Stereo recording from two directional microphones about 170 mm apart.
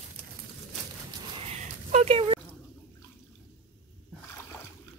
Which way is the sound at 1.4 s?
40° right (ahead or behind).